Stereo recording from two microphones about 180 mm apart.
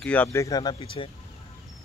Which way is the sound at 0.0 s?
10° left (ahead or behind).